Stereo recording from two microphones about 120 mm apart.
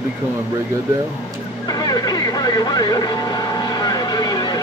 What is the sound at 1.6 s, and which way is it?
Vehicle, 35° left (ahead or behind).